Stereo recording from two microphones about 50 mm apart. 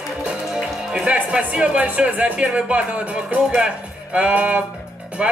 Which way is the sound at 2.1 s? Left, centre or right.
Right.